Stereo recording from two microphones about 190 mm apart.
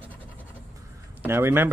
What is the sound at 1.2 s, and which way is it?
Speech, 10° right (ahead or behind).